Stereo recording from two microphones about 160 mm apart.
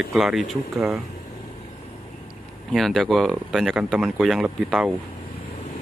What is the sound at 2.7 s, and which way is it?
Speech, centre (ahead or behind).